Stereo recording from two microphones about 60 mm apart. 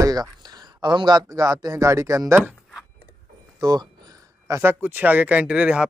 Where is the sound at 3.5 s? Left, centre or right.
Right.